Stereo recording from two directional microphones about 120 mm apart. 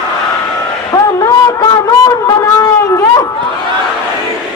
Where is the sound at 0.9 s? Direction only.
30° left (ahead or behind).